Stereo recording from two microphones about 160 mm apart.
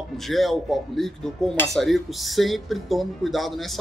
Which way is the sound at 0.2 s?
Centre (ahead or behind).